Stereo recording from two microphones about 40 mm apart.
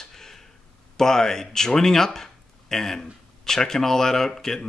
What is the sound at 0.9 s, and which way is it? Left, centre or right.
Speech, centre.